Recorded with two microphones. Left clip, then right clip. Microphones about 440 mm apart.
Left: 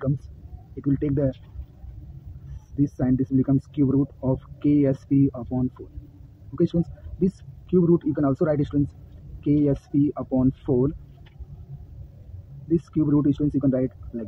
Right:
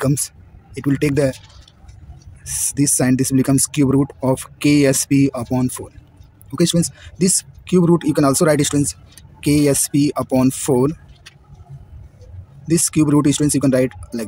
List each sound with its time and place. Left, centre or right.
0.7 s speech: left
2.8 s speech: centre
12.7 s speech: left